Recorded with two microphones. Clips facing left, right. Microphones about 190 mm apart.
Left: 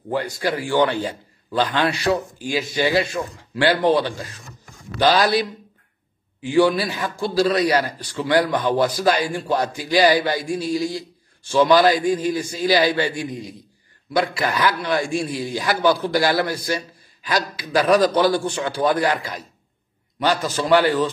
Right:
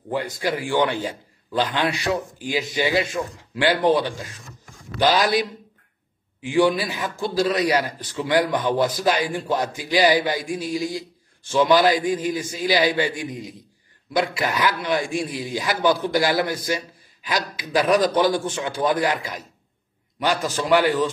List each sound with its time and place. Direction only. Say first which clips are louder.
0.1 s a man's voice: left 2 dB; 15° right (ahead or behind)
5.0 s a man's voice: left 2 dB; 15° right (ahead or behind)